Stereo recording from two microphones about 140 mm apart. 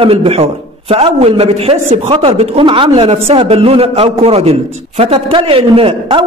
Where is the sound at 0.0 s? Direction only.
45° right (ahead or behind).